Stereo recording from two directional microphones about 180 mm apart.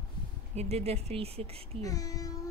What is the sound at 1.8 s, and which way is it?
Child singing, 20° left (ahead or behind).